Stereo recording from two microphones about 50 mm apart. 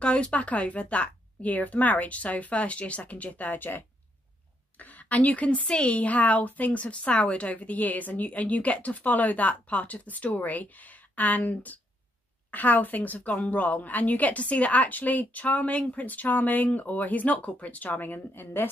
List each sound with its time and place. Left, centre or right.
0.0 s a woman's voice: left